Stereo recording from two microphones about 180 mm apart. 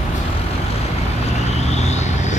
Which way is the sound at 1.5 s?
35° left (ahead or behind).